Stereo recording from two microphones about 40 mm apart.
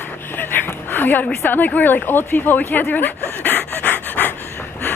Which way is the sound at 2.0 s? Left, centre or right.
Left.